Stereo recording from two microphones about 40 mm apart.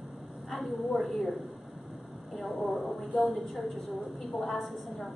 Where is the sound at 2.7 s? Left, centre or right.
Left.